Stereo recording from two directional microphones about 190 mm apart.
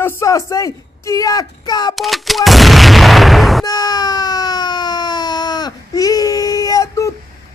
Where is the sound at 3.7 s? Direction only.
20° left (ahead or behind).